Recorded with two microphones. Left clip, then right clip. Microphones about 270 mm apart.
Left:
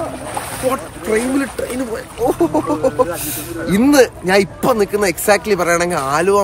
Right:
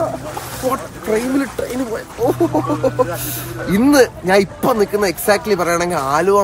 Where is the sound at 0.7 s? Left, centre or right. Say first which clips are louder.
Even; centre.